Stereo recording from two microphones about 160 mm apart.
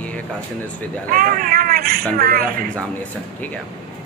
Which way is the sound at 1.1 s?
60° right (ahead or behind).